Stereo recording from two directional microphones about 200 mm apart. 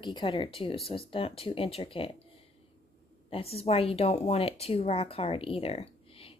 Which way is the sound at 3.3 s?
30° left (ahead or behind).